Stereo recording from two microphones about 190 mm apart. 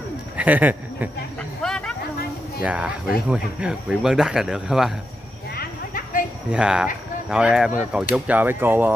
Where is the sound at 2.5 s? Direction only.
5° right (ahead or behind).